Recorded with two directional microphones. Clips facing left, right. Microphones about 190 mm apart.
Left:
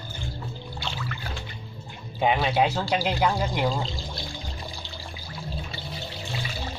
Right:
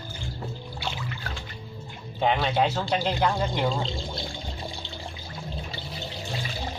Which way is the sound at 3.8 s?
25° right (ahead or behind).